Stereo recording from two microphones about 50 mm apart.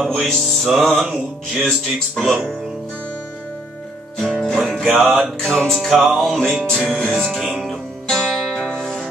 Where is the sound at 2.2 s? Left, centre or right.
Centre.